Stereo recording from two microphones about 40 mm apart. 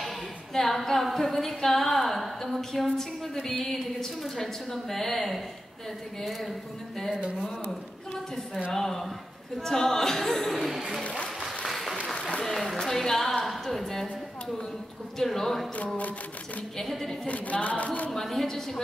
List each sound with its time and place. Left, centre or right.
0.6 s a woman's voice: centre
8.7 s a woman's voice: centre
11.4 s applause: centre
12.4 s a sound: centre
15.1 s a woman's voice: centre
16.7 s a woman's voice: centre
17.3 s speech: left
18.1 s a woman's voice: centre